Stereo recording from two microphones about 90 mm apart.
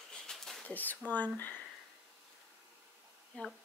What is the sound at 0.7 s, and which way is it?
Speech, 20° left (ahead or behind).